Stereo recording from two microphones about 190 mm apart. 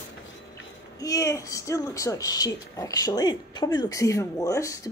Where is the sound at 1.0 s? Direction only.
15° left (ahead or behind).